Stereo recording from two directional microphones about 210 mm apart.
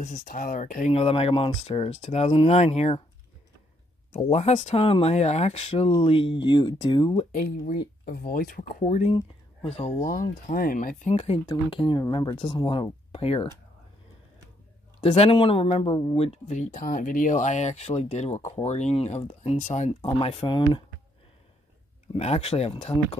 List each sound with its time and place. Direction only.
0.0 s speech: 40° left (ahead or behind)
4.3 s speech: 30° left (ahead or behind)
7.3 s speech: 40° left (ahead or behind)
15.0 s speech: 30° left (ahead or behind)
22.0 s speech: 30° left (ahead or behind)